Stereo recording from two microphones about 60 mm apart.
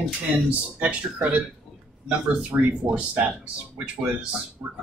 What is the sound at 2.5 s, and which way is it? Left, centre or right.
Speech, right.